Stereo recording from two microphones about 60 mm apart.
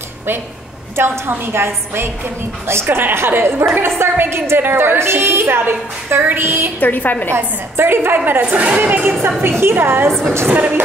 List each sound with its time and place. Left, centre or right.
0.9 s a woman's voice: right
6.8 s a woman's voice: left
7.3 s a woman's voice: right
8.3 s a woman's voice: right
10.5 s a woman's voice: right